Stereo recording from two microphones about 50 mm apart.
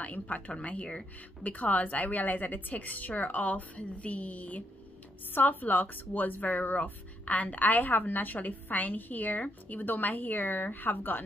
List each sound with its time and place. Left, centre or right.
0.0 s a woman's voice: left